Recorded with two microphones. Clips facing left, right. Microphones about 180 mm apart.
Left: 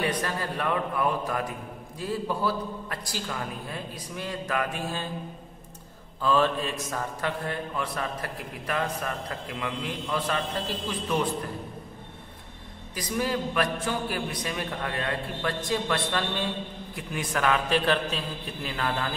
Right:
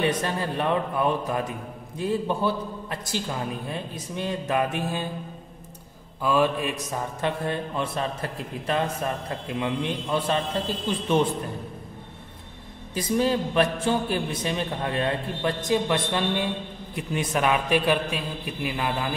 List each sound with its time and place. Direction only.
0.0 s a man's voice: 25° right (ahead or behind)
6.2 s a man's voice: 10° right (ahead or behind)
12.9 s a man's voice: 25° right (ahead or behind)